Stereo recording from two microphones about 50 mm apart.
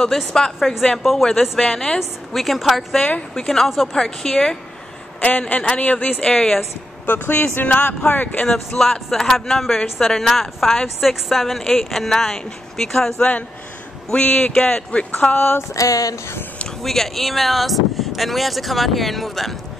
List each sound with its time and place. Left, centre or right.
0.3 s speech: centre
1.6 s speech: centre
2.0 s speech: centre
3.9 s speech: centre
5.2 s a man's voice: left
6.2 s speech: centre
7.1 s speech: left
8.5 s speech: centre
15.3 s a sound: left
15.7 s a sound: left
16.8 s speech: centre